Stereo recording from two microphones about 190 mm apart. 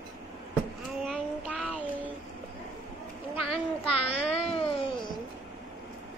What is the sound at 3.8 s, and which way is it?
A child's voice, 30° left (ahead or behind).